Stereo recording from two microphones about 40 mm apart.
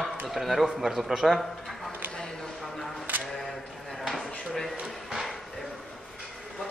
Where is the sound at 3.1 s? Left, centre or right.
Right.